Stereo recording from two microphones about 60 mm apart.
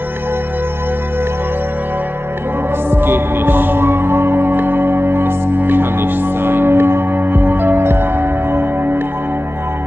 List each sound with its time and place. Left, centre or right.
2.9 s music: right